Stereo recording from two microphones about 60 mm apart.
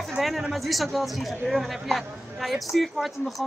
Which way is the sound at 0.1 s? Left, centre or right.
Centre.